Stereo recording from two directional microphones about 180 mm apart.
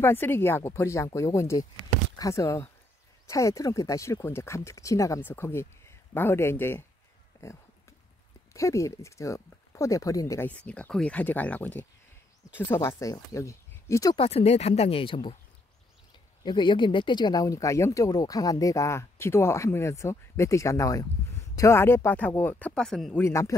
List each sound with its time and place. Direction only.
0.0 s speech: 10° left (ahead or behind)
7.3 s a sound: 15° left (ahead or behind)
8.5 s speech: 15° left (ahead or behind)
14.1 s speech: 35° left (ahead or behind)
16.4 s speech: 25° left (ahead or behind); by 23.2 s centre (ahead or behind)
23.2 s speech: 15° left (ahead or behind)